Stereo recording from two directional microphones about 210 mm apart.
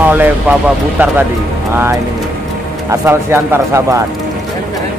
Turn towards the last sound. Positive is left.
turn(degrees=-15)  # may be behind; listen again after turning